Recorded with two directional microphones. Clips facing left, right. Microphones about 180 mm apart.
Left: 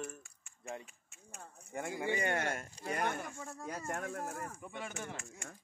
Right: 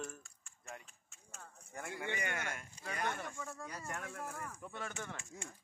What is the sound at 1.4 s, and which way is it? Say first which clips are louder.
Speech: left 6 dB; 25° left (ahead or behind).